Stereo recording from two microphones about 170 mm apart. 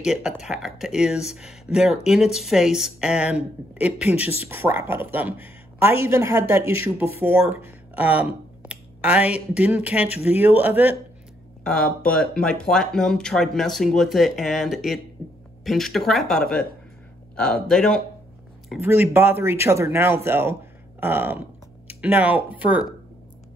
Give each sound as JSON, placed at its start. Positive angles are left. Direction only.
{"t": 0.0, "sound": "speech", "side_deg": -5}
{"t": 4.4, "sound": "a woman's voice", "side_deg": -15}
{"t": 11.6, "sound": "speech", "side_deg": 5}
{"t": 17.6, "sound": "speech", "side_deg": 5}
{"t": 18.8, "sound": "a woman's voice", "side_deg": -15}